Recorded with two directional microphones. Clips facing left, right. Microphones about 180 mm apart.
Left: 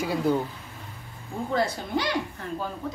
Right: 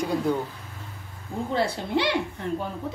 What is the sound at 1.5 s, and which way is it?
A woman's voice, 30° right (ahead or behind).